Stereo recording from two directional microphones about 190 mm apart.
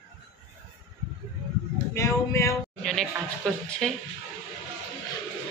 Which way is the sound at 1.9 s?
15° left (ahead or behind).